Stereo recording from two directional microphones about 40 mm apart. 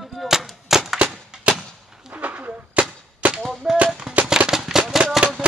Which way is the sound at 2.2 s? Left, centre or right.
Right.